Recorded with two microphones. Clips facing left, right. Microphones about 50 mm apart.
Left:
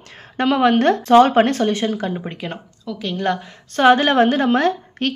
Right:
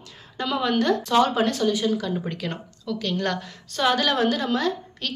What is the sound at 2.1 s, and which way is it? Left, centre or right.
Speech, left.